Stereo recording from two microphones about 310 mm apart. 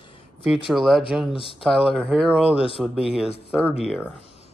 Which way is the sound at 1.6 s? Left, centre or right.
Centre.